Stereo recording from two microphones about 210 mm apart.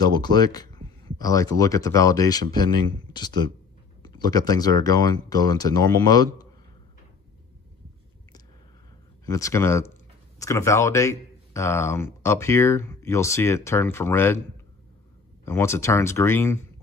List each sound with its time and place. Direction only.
0.0 s speech: 20° left (ahead or behind)
9.2 s speech: 15° left (ahead or behind)
15.4 s speech: 10° left (ahead or behind)